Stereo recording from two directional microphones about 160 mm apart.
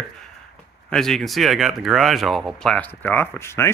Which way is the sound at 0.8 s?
5° left (ahead or behind).